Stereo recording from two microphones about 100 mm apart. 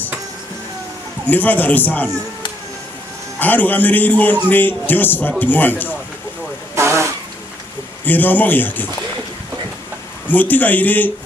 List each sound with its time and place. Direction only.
1.3 s a man's voice: 20° left (ahead or behind)
3.3 s a man's voice: 15° left (ahead or behind)
6.7 s vehicle: 30° right (ahead or behind)
8.0 s a man's voice: 20° left (ahead or behind)
10.2 s a man's voice: 15° left (ahead or behind)